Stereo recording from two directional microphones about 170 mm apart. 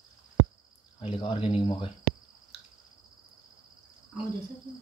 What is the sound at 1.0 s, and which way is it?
Speech, 35° left (ahead or behind).